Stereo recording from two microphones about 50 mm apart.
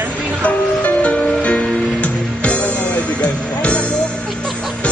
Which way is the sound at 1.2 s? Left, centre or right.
Left.